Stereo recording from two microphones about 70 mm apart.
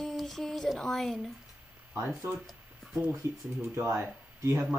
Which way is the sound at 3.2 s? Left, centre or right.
Right.